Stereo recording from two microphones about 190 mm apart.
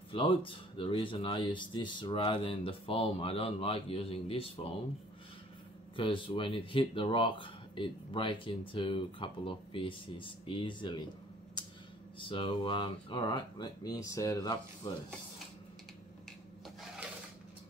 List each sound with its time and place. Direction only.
0.1 s speech: 25° left (ahead or behind)
5.9 s speech: 25° left (ahead or behind)
11.6 s a sound: 20° left (ahead or behind)
12.2 s speech: 25° left (ahead or behind)